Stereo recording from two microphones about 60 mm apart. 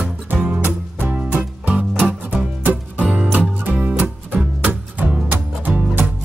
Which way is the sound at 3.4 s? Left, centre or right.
Right.